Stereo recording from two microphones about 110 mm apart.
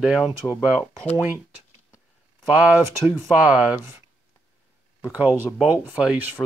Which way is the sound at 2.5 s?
15° right (ahead or behind).